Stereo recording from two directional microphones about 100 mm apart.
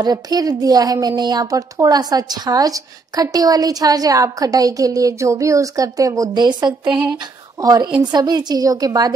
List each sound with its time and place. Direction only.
0.0 s a woman's voice: 40° right (ahead or behind)